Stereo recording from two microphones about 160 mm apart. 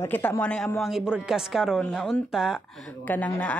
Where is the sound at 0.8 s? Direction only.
5° right (ahead or behind).